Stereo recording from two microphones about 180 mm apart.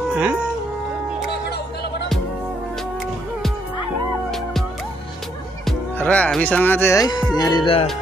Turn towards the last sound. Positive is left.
turn(degrees=30)  # may be behind; listen again after turning